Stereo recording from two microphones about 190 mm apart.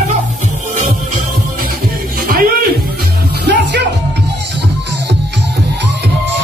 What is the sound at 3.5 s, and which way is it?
Music, 60° right (ahead or behind).